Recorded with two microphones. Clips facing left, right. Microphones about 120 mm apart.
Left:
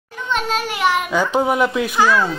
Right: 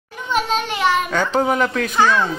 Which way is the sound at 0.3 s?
Centre (ahead or behind).